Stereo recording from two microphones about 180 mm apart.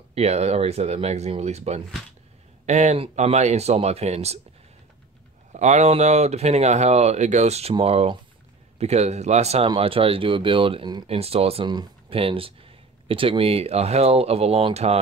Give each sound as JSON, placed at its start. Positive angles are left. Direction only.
{"t": 0.1, "sound": "speech", "side_deg": -35}
{"t": 5.5, "sound": "speech", "side_deg": -40}